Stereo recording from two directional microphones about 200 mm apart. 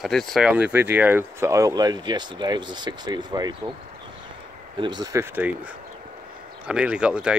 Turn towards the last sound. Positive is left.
turn(degrees=-5)  # may be behind; listen again after turning